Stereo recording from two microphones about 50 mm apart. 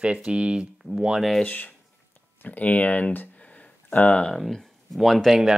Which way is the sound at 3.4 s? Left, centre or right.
Left.